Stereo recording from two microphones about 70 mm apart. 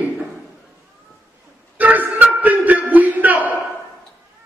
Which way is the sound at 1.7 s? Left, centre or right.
Right.